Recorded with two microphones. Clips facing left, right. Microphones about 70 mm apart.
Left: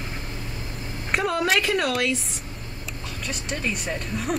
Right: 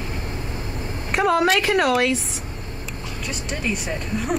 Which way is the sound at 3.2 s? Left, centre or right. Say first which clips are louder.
Right 1 dB; centre.